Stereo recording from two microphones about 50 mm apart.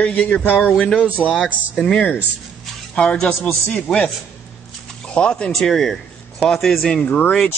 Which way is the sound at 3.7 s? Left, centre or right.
Left.